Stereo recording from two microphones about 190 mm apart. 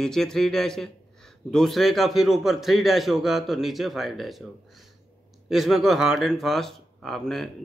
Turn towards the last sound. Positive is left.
turn(degrees=0)  # may be behind; listen again after turning